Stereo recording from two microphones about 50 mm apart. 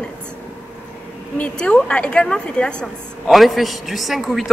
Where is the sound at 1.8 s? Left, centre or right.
Left.